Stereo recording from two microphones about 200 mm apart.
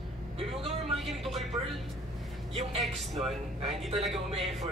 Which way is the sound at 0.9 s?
Centre (ahead or behind).